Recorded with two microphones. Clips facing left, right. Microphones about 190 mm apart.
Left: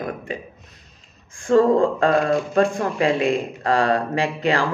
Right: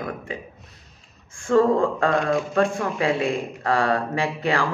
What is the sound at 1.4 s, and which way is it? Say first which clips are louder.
Speech: left 2 dB; 35° left (ahead or behind).